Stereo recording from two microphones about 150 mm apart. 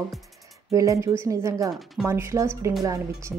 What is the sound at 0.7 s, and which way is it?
Speech, 20° right (ahead or behind).